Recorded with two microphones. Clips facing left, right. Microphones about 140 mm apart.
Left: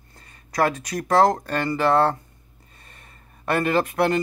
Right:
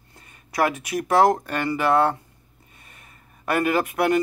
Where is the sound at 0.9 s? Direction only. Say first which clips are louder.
Right 1 dB; 5° right (ahead or behind).